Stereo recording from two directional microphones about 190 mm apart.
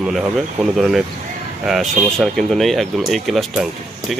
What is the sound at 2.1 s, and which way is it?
Speech, centre (ahead or behind).